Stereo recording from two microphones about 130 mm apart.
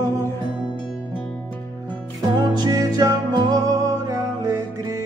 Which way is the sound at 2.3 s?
25° right (ahead or behind).